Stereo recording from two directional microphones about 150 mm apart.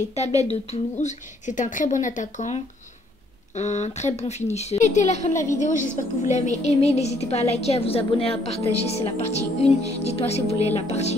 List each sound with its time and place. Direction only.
0.4 s a woman's voice: 50° left (ahead or behind)
5.3 s a woman's voice: 20° left (ahead or behind)
5.6 s a woman's voice: 55° left (ahead or behind)